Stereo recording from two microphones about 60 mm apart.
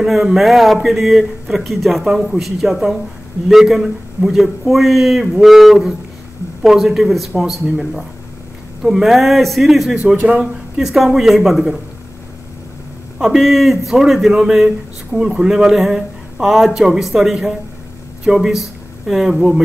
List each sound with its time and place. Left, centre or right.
0.0 s a man's voice: centre
10.1 s speech: right
10.4 s a man's voice: centre
13.2 s a man's voice: centre